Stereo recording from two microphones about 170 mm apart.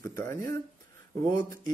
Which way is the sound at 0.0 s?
15° left (ahead or behind).